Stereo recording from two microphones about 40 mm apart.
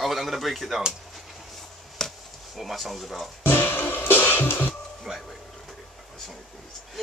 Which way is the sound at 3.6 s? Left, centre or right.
Left.